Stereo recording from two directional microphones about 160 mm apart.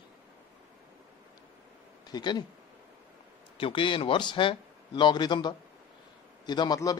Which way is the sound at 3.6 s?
30° left (ahead or behind).